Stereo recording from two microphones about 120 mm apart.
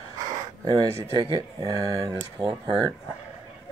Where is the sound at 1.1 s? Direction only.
35° right (ahead or behind).